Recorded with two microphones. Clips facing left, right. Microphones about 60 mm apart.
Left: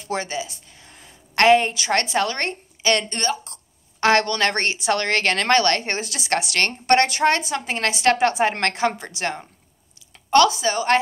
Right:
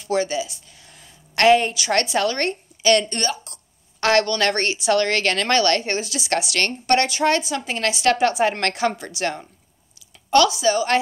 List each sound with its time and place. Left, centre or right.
0.0 s a woman's voice: left